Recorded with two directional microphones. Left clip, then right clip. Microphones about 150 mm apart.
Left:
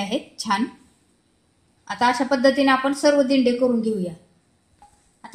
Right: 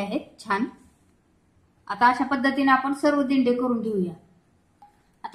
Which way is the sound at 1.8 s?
45° left (ahead or behind).